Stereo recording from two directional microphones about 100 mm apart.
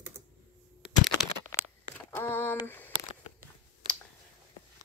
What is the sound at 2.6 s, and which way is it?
Speech, 20° left (ahead or behind).